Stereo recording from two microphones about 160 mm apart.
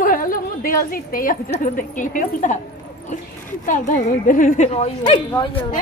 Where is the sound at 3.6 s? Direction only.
55° left (ahead or behind).